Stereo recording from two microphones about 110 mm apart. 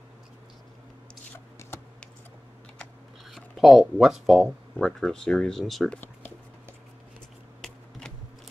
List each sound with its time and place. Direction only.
1.6 s typing: 25° left (ahead or behind)
3.3 s speech: centre (ahead or behind)
7.6 s a sound: 5° left (ahead or behind)